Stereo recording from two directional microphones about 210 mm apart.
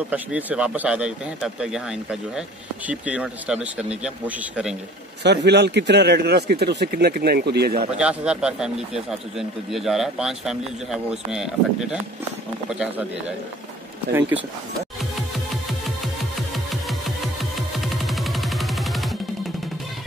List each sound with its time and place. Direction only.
0.1 s speech: 5° right (ahead or behind)
5.2 s speech: 55° right (ahead or behind)
8.0 s speech: 5° right (ahead or behind)
16.5 s music: centre (ahead or behind)